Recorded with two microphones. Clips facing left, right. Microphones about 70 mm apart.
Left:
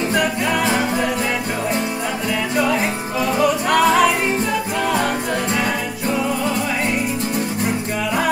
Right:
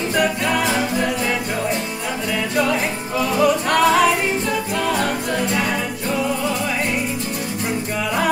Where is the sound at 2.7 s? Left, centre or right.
Left.